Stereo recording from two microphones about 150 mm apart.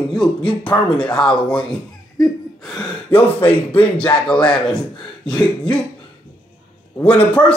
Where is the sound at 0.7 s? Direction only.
15° left (ahead or behind).